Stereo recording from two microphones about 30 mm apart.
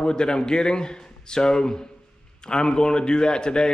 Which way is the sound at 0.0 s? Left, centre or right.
Left.